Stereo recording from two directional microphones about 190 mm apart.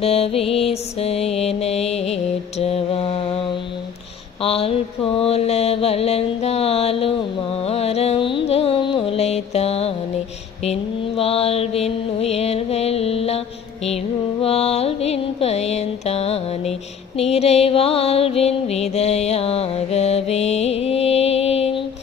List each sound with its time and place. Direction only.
0.0 s mantra: 30° left (ahead or behind)
4.4 s mantra: 30° left (ahead or behind)
7.6 s music: 35° left (ahead or behind)
10.6 s mantra: 30° left (ahead or behind)
14.4 s mantra: 30° left (ahead or behind)
17.2 s music: 35° left (ahead or behind)